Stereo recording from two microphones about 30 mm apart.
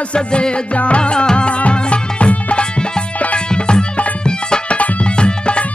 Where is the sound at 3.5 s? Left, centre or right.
Left.